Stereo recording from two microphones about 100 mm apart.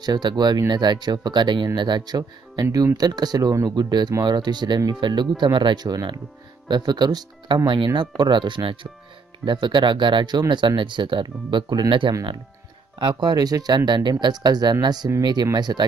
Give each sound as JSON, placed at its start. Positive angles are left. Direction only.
{"t": 0.0, "sound": "speech", "side_deg": -45}